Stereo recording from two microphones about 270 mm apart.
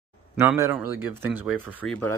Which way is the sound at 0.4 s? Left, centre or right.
Centre.